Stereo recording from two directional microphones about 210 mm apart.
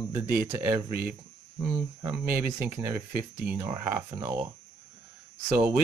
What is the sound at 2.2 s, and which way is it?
Speech, 45° right (ahead or behind).